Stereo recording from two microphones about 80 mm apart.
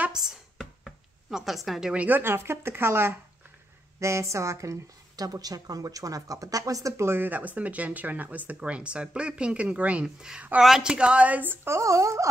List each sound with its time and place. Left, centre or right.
0.1 s a sound: centre
0.6 s music: centre
2.0 s a woman's voice: right